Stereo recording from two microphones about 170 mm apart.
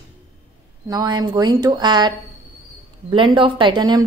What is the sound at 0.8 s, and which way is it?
A woman's voice, 25° right (ahead or behind).